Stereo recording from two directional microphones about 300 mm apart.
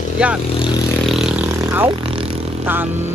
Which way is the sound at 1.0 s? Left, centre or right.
Centre.